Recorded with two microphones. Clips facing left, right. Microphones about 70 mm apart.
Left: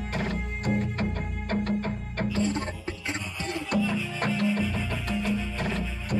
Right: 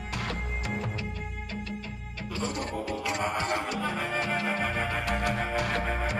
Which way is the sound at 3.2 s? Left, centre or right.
Right.